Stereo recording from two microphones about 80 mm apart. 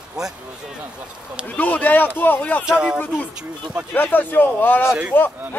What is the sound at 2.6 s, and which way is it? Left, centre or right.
Speech, centre.